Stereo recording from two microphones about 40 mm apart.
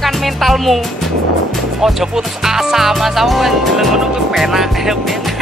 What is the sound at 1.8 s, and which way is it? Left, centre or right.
Music, centre.